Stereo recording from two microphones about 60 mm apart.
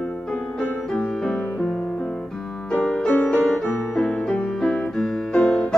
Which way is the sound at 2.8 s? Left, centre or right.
Centre.